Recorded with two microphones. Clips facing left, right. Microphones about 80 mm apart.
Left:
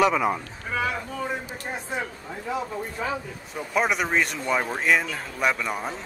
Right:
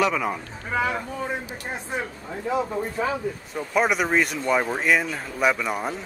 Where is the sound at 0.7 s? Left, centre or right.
Right.